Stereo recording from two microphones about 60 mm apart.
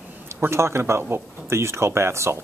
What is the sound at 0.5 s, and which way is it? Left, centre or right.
Speech, right.